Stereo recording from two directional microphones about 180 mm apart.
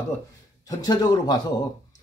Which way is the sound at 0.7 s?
20° left (ahead or behind).